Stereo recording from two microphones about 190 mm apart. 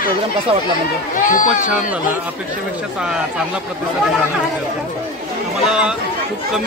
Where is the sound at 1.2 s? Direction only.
45° left (ahead or behind).